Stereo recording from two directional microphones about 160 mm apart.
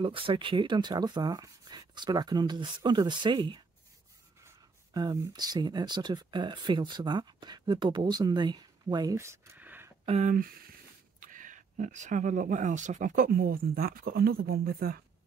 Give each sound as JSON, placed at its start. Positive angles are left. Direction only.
{"t": 0.0, "sound": "speech", "side_deg": -35}
{"t": 10.0, "sound": "speech", "side_deg": -45}
{"t": 10.3, "sound": "speech", "side_deg": -65}